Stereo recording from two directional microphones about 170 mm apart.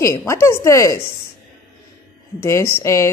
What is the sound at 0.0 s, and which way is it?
Speech, 15° left (ahead or behind).